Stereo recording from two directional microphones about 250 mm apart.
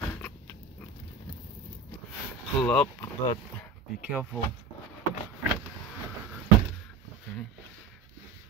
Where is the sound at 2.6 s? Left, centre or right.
Centre.